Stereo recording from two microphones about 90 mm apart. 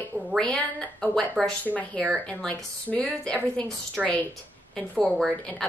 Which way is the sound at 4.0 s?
Centre (ahead or behind).